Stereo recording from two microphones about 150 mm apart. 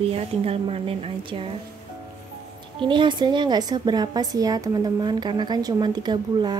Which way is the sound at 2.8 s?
30° right (ahead or behind).